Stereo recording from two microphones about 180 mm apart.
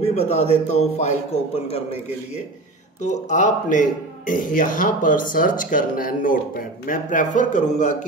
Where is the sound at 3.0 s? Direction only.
40° left (ahead or behind).